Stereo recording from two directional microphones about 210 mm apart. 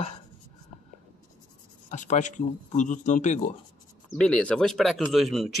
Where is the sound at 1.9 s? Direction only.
35° left (ahead or behind).